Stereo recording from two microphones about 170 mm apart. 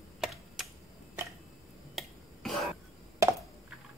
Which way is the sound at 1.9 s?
Centre (ahead or behind).